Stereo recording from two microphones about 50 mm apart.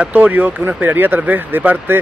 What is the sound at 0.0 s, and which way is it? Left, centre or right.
Speech, right.